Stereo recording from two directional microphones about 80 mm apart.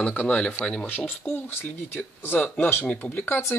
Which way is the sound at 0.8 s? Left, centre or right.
Left.